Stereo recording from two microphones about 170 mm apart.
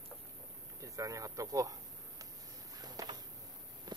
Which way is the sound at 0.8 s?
20° right (ahead or behind).